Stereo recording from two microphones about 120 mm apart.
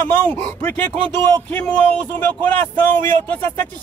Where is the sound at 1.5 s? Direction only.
15° left (ahead or behind).